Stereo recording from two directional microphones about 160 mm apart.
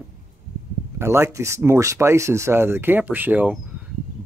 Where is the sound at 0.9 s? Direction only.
15° right (ahead or behind).